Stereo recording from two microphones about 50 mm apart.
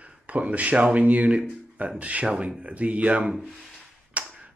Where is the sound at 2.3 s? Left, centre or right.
Centre.